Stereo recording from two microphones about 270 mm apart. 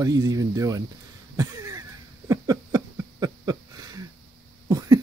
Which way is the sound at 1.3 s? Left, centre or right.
Centre.